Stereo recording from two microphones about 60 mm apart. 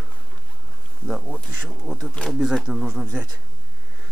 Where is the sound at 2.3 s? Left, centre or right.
Centre.